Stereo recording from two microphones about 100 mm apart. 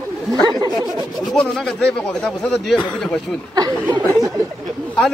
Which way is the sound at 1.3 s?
5° left (ahead or behind).